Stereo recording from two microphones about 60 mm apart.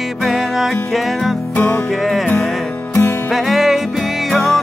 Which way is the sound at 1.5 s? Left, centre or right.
Left.